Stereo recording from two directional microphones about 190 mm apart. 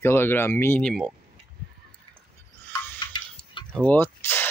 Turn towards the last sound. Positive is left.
turn(degrees=10)  # may be behind; listen again after turning